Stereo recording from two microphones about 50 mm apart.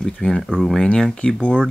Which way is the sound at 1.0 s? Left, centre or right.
Centre.